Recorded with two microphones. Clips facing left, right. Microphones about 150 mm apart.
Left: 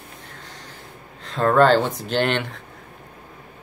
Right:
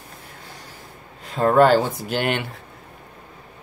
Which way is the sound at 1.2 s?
10° right (ahead or behind).